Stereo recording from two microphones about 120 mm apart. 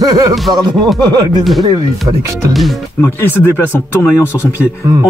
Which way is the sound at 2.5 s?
Centre (ahead or behind).